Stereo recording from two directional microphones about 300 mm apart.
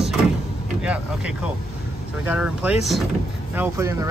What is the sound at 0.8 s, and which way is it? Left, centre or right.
Vehicle, centre.